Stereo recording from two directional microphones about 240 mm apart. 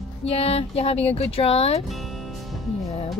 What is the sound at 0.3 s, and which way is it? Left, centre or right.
Speech, left.